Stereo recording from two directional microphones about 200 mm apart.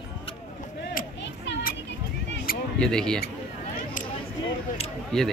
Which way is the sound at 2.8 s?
5° left (ahead or behind).